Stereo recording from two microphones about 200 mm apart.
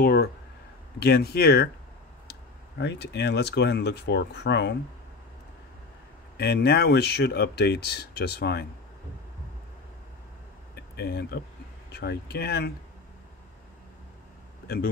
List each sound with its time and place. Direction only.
0.0 s speech: 50° left (ahead or behind)
2.8 s speech: 60° left (ahead or behind)
6.3 s speech: 55° left (ahead or behind)
10.7 s a sound: 50° left (ahead or behind)
11.9 s speech: 55° left (ahead or behind)